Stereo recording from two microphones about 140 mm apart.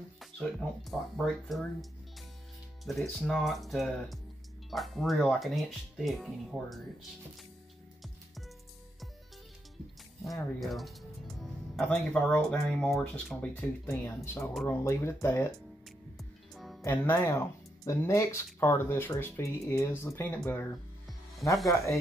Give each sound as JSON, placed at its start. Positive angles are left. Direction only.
{"t": 0.2, "sound": "speech", "side_deg": 0}
{"t": 10.6, "sound": "speech", "side_deg": 0}
{"t": 14.0, "sound": "speech", "side_deg": 20}
{"t": 16.2, "sound": "music", "side_deg": 0}
{"t": 16.8, "sound": "speech", "side_deg": 15}
{"t": 21.6, "sound": "speech", "side_deg": 20}